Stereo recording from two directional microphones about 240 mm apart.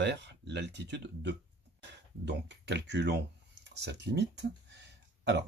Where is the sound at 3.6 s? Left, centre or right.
Right.